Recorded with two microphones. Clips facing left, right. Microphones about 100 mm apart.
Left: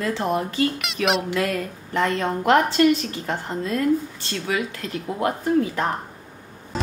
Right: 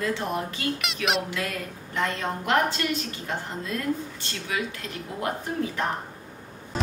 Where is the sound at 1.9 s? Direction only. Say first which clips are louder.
Left 6 dB; 60° left (ahead or behind).